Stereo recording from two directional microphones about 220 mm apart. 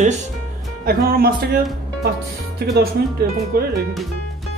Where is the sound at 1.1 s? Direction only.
40° right (ahead or behind).